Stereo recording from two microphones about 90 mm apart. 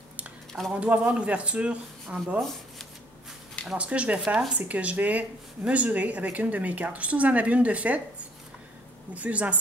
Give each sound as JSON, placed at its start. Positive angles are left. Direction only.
{"t": 0.7, "sound": "speech", "side_deg": -15}
{"t": 3.6, "sound": "speech", "side_deg": -15}
{"t": 9.1, "sound": "speech", "side_deg": -15}